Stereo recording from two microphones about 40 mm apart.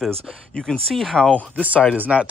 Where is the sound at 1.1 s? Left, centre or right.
Left.